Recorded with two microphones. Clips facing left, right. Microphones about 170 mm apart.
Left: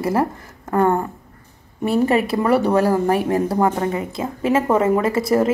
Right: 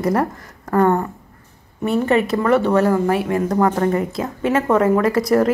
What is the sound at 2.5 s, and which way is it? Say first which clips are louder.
Speech: right 1 dB; 10° left (ahead or behind).